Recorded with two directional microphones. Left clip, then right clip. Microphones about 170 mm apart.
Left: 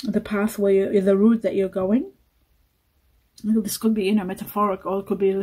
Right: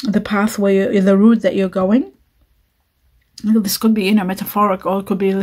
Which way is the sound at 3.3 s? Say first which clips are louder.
Right 7 dB; 30° right (ahead or behind).